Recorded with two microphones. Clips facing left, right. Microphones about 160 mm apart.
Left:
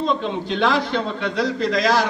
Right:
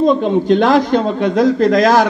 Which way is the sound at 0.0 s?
50° right (ahead or behind).